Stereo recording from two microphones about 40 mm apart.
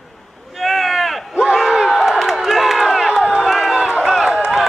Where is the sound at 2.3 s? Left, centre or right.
Centre.